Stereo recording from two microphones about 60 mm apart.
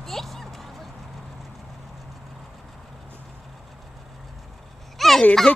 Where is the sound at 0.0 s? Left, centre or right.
Centre.